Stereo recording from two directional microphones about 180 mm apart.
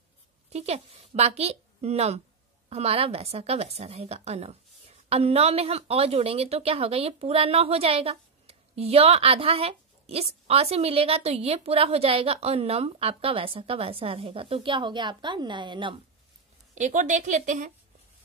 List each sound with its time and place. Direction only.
0.5 s a woman's voice: 35° right (ahead or behind)
16.7 s a woman's voice: 40° right (ahead or behind)